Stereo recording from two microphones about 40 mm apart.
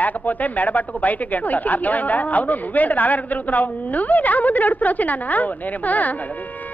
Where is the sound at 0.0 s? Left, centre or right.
Left.